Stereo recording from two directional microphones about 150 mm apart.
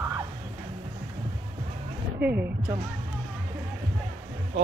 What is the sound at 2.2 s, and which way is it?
Speech, 10° right (ahead or behind).